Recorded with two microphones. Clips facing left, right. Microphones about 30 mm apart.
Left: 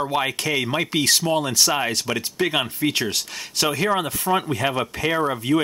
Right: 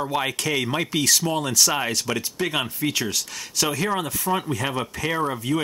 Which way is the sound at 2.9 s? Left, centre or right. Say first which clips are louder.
Left 2 dB; left.